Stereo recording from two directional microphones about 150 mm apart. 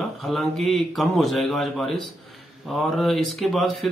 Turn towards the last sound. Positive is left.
turn(degrees=0)  # may be behind; listen again after turning